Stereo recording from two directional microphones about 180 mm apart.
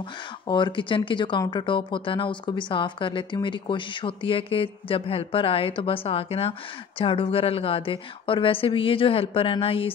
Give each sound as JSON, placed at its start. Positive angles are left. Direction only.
{"t": 0.5, "sound": "a woman's voice", "side_deg": 25}